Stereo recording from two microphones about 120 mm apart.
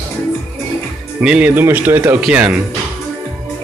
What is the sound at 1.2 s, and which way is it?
Speech, 10° right (ahead or behind).